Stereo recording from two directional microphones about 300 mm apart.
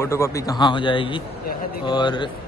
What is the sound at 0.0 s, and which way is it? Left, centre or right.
A man's voice, centre.